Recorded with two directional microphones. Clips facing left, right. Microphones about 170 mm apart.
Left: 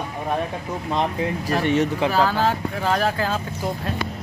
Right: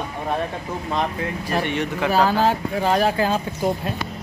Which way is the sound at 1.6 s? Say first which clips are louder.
Left 5 dB; 40° left (ahead or behind).